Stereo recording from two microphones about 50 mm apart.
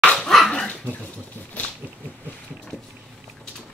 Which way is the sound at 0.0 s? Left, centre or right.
Centre.